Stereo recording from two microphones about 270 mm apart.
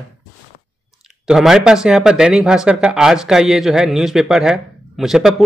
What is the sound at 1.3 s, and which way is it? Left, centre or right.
Speech, centre.